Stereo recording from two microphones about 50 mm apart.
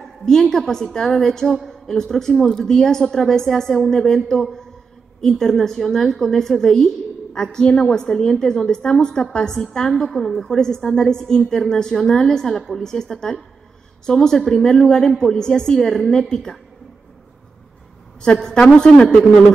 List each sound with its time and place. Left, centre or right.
0.0 s a woman's voice: centre
18.2 s a woman's voice: centre